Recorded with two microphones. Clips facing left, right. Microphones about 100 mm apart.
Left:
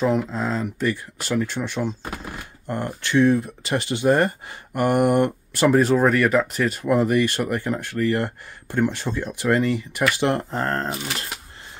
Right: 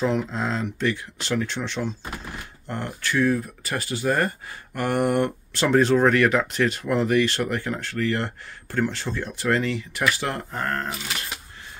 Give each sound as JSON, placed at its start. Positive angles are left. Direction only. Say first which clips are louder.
{"t": 0.0, "sound": "speech", "louder": "left 2 dB", "side_deg": 5}
{"t": 10.2, "sound": "speech", "louder": "left 6 dB", "side_deg": 25}